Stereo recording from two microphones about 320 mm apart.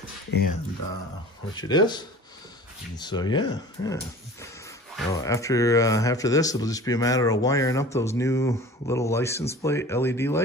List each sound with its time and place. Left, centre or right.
0.3 s speech: left
1.6 s speech: centre